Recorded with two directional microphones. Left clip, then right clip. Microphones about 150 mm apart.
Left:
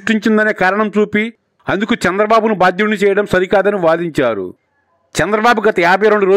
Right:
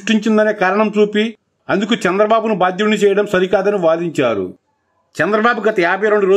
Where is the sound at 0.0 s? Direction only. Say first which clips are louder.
Left 1 dB; 55° left (ahead or behind).